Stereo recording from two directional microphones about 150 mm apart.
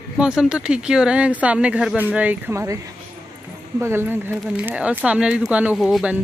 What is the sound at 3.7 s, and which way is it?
Speech, 15° right (ahead or behind).